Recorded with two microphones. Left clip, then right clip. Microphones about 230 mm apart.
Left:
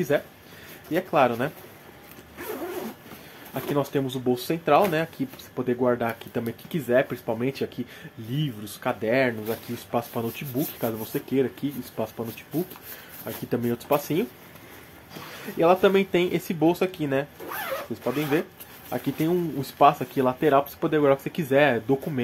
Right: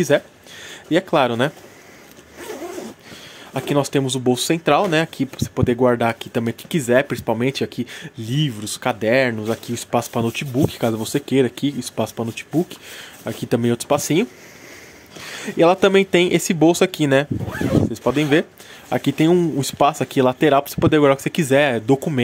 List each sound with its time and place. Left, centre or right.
0.1 s speech: right
3.5 s speech: right
15.3 s speech: right